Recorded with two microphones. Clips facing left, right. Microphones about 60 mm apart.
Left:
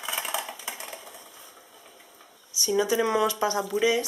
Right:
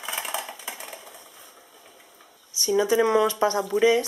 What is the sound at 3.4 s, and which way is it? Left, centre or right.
Speech, centre.